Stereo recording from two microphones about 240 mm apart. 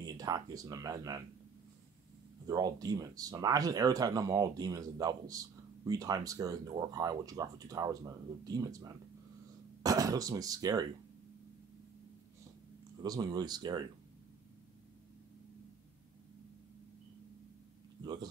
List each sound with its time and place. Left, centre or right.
0.0 s speech: centre
2.4 s speech: centre
13.0 s speech: centre